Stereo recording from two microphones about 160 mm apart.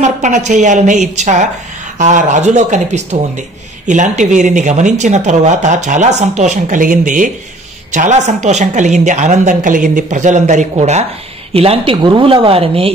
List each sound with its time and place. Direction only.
0.0 s speech: 45° right (ahead or behind)